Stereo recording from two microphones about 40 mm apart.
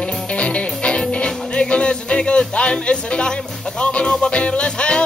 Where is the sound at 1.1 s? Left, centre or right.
Left.